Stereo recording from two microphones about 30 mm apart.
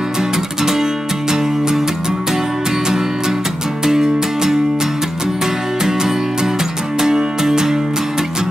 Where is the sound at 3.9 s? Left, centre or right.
Centre.